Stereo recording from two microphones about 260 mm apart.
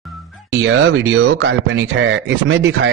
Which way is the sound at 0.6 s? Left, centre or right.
Right.